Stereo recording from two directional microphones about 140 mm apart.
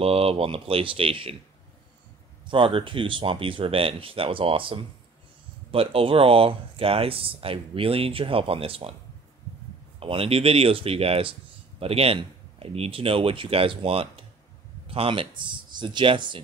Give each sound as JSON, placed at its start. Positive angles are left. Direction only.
{"t": 0.0, "sound": "speech", "side_deg": -45}
{"t": 2.4, "sound": "speech", "side_deg": -40}
{"t": 9.9, "sound": "speech", "side_deg": -40}